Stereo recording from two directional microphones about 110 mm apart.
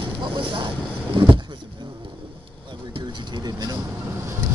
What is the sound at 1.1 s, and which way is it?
Vehicle, 45° right (ahead or behind).